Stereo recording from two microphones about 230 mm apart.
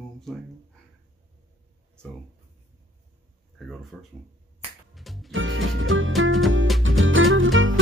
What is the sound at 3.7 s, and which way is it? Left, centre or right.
Speech, centre.